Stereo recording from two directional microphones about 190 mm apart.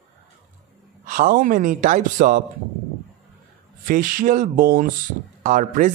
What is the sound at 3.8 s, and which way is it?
Speech, 45° right (ahead or behind).